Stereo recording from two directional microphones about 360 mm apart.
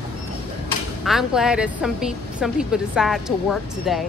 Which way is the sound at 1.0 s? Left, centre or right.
Centre.